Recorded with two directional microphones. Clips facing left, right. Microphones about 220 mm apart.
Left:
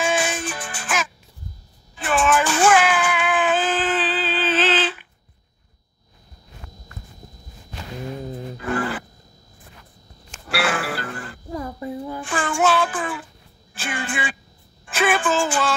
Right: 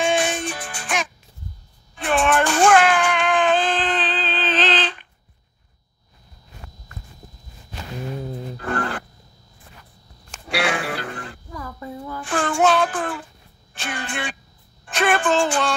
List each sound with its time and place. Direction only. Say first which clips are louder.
0.0 s music: right 2 dB; 5° left (ahead or behind)
2.0 s a sound: right 1 dB; centre (ahead or behind)
8.7 s grunt: left 2 dB; 5° left (ahead or behind)
10.5 s music: even; 5° left (ahead or behind)
11.5 s child singing: left 6 dB; 20° left (ahead or behind)
12.4 s child singing: right 2 dB; 5° left (ahead or behind)
13.7 s a sound: left 1 dB; 5° left (ahead or behind)
14.9 s music: right 1 dB; 5° left (ahead or behind)